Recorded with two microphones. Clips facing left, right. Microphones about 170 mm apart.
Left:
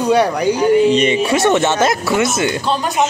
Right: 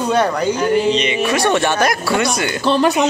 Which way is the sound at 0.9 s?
50° left (ahead or behind).